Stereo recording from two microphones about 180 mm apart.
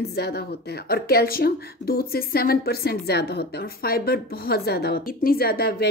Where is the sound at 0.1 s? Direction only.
65° left (ahead or behind).